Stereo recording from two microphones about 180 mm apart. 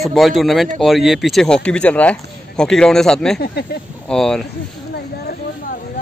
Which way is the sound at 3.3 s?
65° left (ahead or behind).